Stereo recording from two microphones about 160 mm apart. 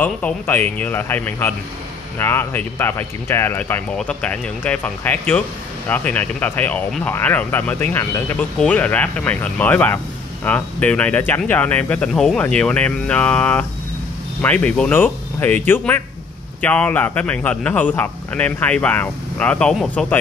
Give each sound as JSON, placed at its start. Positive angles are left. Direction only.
{"t": 0.0, "sound": "speech", "side_deg": 10}